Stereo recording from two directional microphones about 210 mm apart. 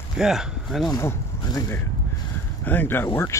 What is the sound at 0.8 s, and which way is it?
Speech, 15° left (ahead or behind).